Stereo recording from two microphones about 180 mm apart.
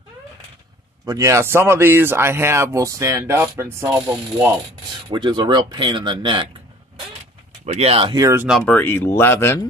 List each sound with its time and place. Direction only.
1.0 s speech: 20° right (ahead or behind)
5.1 s speech: 25° right (ahead or behind)
7.6 s speech: 35° right (ahead or behind)
8.2 s speech: 15° right (ahead or behind)
8.5 s speech: centre (ahead or behind)
8.7 s speech: 10° left (ahead or behind)